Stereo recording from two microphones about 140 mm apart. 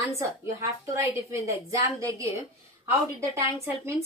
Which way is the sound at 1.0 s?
20° right (ahead or behind).